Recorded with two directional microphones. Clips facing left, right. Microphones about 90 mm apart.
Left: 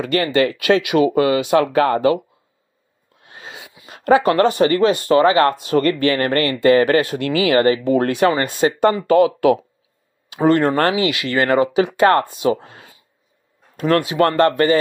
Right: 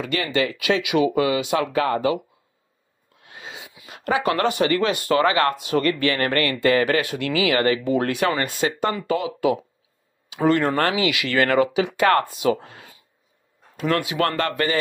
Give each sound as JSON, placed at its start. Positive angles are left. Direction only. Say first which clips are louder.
{"t": 0.0, "sound": "speech", "louder": "left 6 dB", "side_deg": 45}
{"t": 3.3, "sound": "a sound", "louder": "left 2 dB", "side_deg": 40}
{"t": 3.7, "sound": "speech", "louder": "left 9 dB", "side_deg": 40}
{"t": 9.0, "sound": "speech", "louder": "left 9 dB", "side_deg": 65}
{"t": 10.3, "sound": "speech", "louder": "left 4 dB", "side_deg": 40}
{"t": 11.7, "sound": "speech", "louder": "left 6 dB", "side_deg": 40}
{"t": 12.1, "sound": "speech", "louder": "left 3 dB", "side_deg": 25}
{"t": 13.7, "sound": "speech", "louder": "left 6 dB", "side_deg": 40}